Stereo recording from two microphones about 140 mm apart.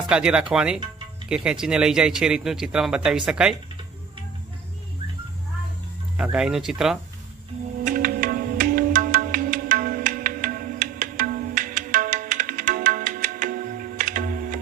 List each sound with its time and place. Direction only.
0.1 s speech: 10° right (ahead or behind)
6.1 s speech: 5° right (ahead or behind)
7.8 s music: 90° right; by 14.6 s 70° right (ahead or behind)